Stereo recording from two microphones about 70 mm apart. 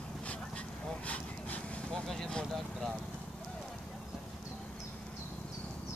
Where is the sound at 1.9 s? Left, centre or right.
Centre.